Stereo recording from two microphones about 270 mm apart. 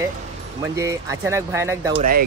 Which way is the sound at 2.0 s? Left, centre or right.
Right.